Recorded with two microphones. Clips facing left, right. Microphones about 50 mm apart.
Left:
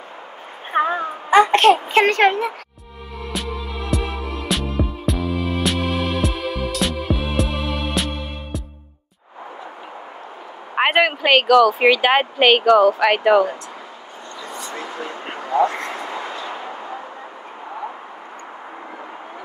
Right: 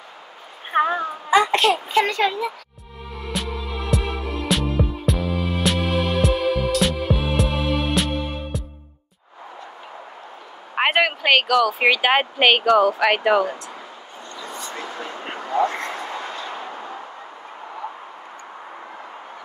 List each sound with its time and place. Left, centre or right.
0.9 s a sound: left
3.3 s music: centre
10.8 s speech: centre
15.5 s vehicle: left